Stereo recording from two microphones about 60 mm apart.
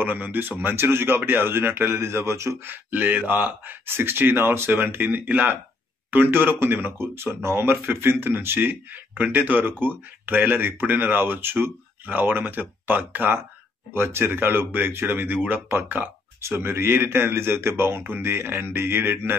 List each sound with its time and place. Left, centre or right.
0.0 s speech: right
2.7 s speech: right
16.3 s speech: right